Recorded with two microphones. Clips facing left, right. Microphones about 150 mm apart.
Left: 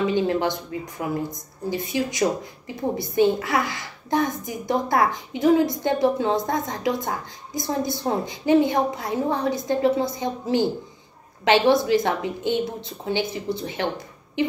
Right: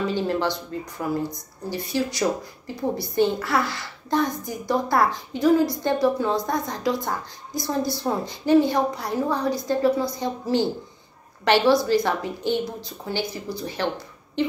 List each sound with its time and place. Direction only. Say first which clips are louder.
0.0 s a woman's voice: left 2 dB; 15° left (ahead or behind)